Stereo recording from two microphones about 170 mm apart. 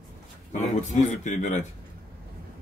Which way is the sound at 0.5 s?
45° left (ahead or behind).